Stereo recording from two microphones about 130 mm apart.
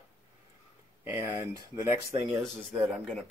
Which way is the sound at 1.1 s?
20° right (ahead or behind).